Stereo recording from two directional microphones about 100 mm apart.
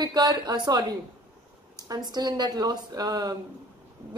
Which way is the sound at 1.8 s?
40° right (ahead or behind).